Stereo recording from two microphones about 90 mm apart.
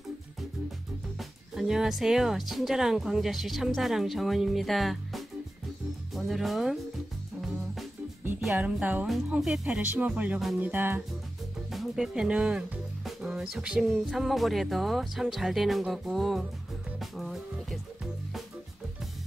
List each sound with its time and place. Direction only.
1.5 s speech: 5° right (ahead or behind)
8.5 s music: 15° right (ahead or behind)
9.3 s speech: 5° right (ahead or behind)
9.8 s speech: 15° right (ahead or behind)
10.6 s music: 20° right (ahead or behind)
11.7 s speech: 5° right (ahead or behind)
17.0 s music: centre (ahead or behind)